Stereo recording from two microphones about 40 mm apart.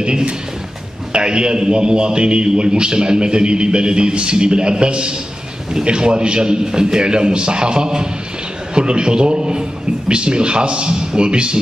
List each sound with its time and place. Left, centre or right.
0.0 s a man's voice: right